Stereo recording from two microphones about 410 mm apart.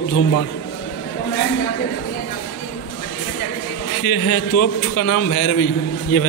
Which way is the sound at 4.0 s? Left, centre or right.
Left.